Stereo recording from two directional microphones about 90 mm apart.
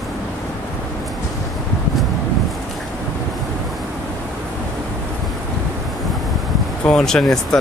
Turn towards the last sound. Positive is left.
turn(degrees=5)  # may be behind; listen again after turning